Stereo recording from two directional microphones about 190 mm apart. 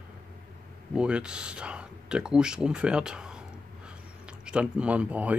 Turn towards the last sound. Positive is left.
turn(degrees=-5)  # may be behind; listen again after turning